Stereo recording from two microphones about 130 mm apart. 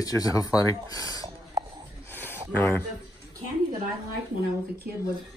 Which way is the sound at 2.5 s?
15° left (ahead or behind).